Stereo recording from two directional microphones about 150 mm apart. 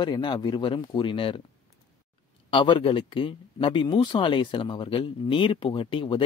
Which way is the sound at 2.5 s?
35° left (ahead or behind).